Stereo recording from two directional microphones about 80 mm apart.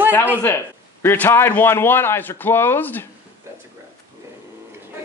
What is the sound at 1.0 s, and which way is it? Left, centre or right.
Speech, left.